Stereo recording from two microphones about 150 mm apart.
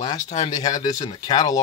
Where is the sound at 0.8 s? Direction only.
55° left (ahead or behind).